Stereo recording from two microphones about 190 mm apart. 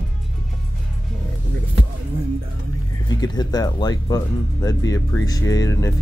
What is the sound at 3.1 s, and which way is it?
Speech, 20° left (ahead or behind).